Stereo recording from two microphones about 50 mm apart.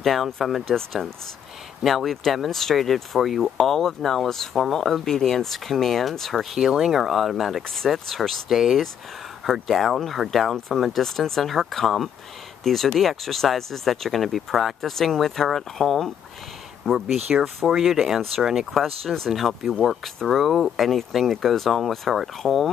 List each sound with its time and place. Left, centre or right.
0.0 s speech: centre
1.8 s speech: centre
6.6 s speech: centre